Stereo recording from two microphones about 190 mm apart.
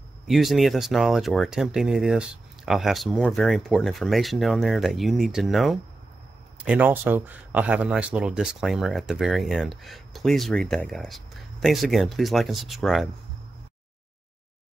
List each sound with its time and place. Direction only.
0.3 s speech: centre (ahead or behind)